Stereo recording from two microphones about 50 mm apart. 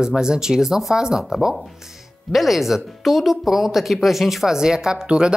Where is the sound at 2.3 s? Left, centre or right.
Centre.